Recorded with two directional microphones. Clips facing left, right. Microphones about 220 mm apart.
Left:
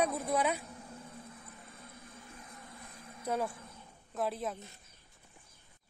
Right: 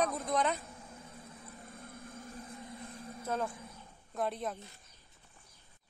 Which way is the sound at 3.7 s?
Centre (ahead or behind).